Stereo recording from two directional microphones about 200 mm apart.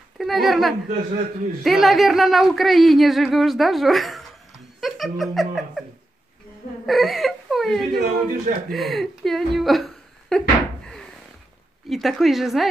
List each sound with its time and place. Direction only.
0.2 s speech: centre (ahead or behind)
4.7 s giggle: centre (ahead or behind)
6.9 s whimper: centre (ahead or behind)
7.9 s speech: 50° right (ahead or behind)
8.6 s speech: centre (ahead or behind)
11.9 s speech: centre (ahead or behind)